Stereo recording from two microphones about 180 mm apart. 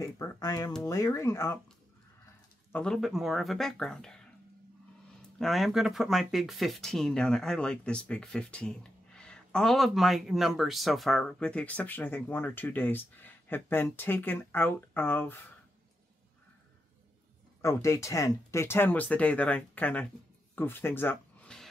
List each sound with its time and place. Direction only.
0.0 s speech: 15° left (ahead or behind)
2.7 s speech: 5° left (ahead or behind)
5.4 s speech: centre (ahead or behind)
17.6 s speech: 15° left (ahead or behind)